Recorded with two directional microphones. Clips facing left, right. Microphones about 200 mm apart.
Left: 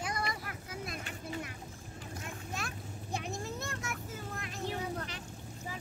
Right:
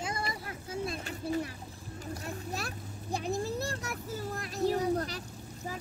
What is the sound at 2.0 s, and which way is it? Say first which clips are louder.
Vehicle: right 6 dB; 35° right (ahead or behind).